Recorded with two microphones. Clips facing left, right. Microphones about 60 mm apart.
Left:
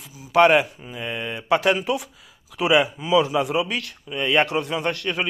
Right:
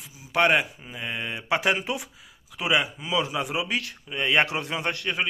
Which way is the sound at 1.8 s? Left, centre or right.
Right.